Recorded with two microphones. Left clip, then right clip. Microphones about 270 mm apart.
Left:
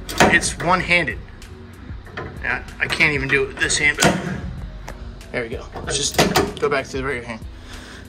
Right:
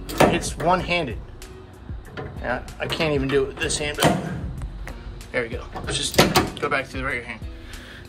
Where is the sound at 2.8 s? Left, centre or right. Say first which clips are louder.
Left 6 dB; centre.